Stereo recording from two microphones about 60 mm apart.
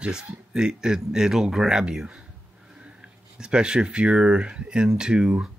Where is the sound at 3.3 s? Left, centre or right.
Centre.